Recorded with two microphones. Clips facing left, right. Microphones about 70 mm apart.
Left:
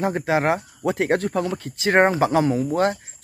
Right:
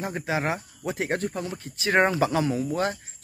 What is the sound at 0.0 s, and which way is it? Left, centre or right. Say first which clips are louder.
Speech: left 7 dB; left.